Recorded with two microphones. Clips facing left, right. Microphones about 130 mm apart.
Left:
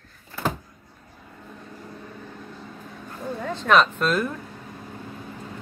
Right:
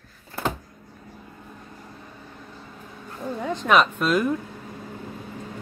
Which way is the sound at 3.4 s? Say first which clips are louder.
Even; 15° right (ahead or behind).